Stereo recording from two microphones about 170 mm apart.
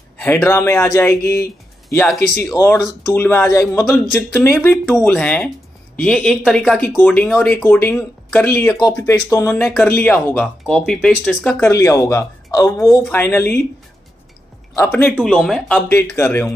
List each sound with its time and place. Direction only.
0.2 s speech: 15° left (ahead or behind)
2.5 s speech: 15° left (ahead or behind)
11.6 s speech: 15° left (ahead or behind)
14.8 s speech: 10° left (ahead or behind)
15.9 s speech: 15° left (ahead or behind)